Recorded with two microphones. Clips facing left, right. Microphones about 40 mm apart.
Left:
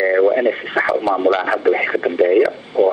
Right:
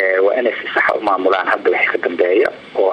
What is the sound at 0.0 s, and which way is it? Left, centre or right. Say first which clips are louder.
Speech: even; centre.